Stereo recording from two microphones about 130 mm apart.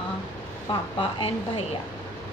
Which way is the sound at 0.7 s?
40° left (ahead or behind).